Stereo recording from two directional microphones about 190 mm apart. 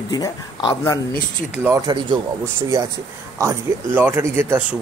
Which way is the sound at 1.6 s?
15° right (ahead or behind).